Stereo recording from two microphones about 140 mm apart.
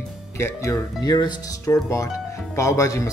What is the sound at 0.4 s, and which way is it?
Speech, 20° left (ahead or behind).